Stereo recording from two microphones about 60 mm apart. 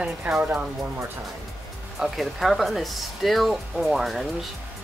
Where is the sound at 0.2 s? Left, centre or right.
Right.